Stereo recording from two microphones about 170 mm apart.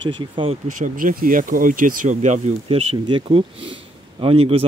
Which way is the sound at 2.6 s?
30° right (ahead or behind).